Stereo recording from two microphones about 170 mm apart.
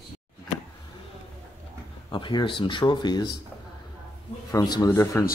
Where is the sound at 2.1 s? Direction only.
30° left (ahead or behind).